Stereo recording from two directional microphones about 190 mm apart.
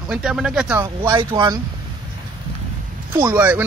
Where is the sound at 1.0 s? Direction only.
25° right (ahead or behind).